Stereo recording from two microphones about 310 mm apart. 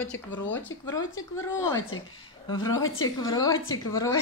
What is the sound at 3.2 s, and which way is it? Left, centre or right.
Speech, centre.